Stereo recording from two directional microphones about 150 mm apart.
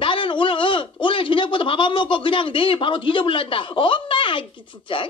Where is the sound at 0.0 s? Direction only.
35° left (ahead or behind).